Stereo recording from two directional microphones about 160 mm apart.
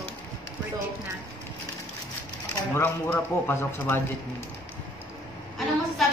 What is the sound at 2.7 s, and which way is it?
Speech, 10° left (ahead or behind).